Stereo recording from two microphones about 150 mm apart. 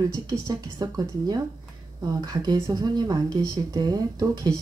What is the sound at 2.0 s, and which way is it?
Speech, 25° right (ahead or behind).